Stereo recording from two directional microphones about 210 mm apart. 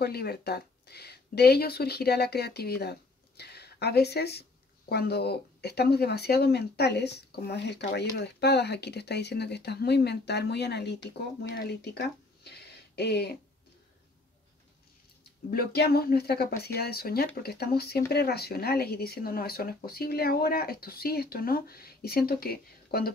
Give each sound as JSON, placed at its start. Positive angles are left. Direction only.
{"t": 0.0, "sound": "speech", "side_deg": 50}
{"t": 15.5, "sound": "speech", "side_deg": 50}